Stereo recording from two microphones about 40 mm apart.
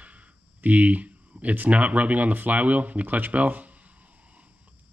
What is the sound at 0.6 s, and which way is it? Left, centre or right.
Speech, right.